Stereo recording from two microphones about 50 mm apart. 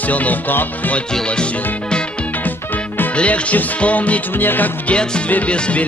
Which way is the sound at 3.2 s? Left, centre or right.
Left.